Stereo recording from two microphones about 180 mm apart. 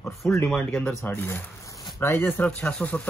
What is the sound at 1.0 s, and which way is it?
Speech, 10° left (ahead or behind).